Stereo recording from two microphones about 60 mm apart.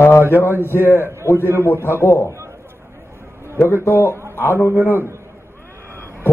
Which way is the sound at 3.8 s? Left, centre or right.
Left.